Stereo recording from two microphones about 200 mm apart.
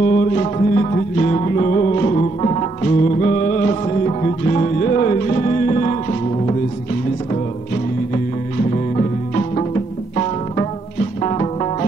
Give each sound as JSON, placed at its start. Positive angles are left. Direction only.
{"t": 0.1, "sound": "music", "side_deg": 30}
{"t": 8.9, "sound": "music", "side_deg": 30}